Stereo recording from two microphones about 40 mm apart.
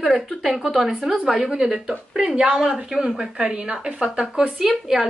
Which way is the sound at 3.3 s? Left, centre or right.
Right.